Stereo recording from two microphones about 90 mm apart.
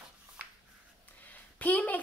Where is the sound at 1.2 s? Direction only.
20° left (ahead or behind).